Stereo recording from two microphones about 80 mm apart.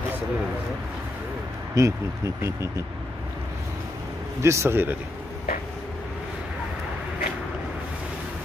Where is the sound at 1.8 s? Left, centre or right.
Right.